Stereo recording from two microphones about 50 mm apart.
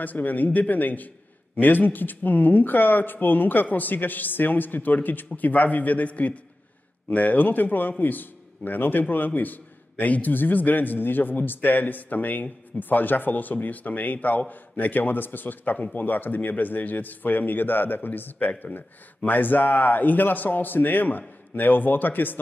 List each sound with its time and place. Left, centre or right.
0.0 s a man's voice: left